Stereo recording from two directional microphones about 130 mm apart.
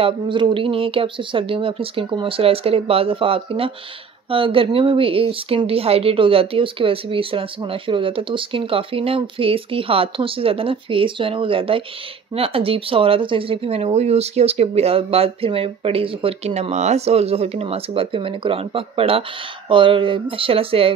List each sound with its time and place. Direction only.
0.0 s speech: 40° right (ahead or behind)